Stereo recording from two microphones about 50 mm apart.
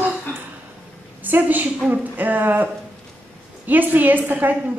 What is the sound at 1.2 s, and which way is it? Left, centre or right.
A woman's voice, right.